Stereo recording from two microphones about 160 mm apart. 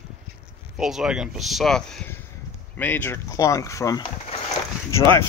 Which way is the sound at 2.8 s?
10° left (ahead or behind).